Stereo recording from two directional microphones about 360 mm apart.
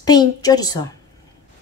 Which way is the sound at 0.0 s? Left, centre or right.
Centre.